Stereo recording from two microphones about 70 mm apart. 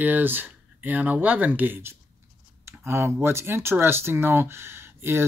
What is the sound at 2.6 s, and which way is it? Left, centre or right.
Speech, right.